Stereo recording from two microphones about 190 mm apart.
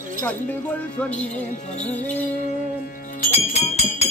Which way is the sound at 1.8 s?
10° left (ahead or behind).